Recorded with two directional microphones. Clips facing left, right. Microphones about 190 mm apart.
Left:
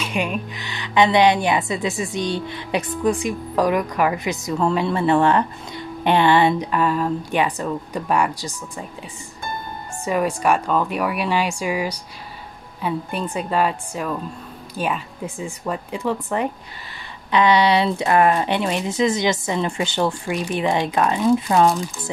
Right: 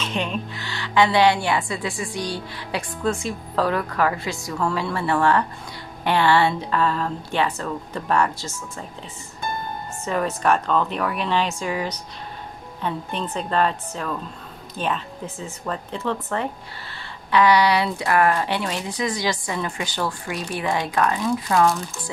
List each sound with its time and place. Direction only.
0.0 s a woman's voice: 10° left (ahead or behind)
10.0 s a woman's voice: 10° left (ahead or behind)